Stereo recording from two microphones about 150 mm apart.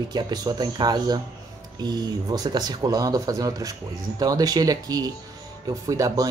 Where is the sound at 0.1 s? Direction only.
25° right (ahead or behind).